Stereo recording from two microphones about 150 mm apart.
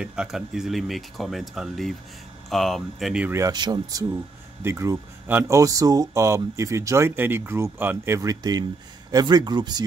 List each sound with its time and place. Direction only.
0.0 s speech: 5° right (ahead or behind)
3.3 s speech: 20° right (ahead or behind)
3.5 s speech: 30° right (ahead or behind)
4.6 s speech: 15° right (ahead or behind)